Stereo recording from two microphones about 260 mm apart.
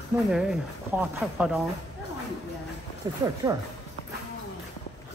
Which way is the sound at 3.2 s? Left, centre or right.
Centre.